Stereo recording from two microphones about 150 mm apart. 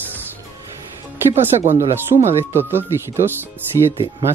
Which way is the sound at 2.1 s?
40° right (ahead or behind).